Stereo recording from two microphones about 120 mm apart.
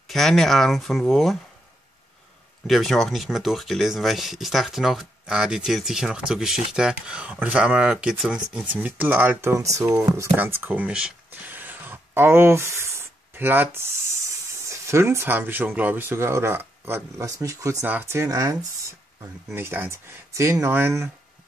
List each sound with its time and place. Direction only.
0.1 s speech: centre (ahead or behind)
2.6 s speech: centre (ahead or behind); by 18.6 s 30° right (ahead or behind)
19.5 s speech: 20° right (ahead or behind)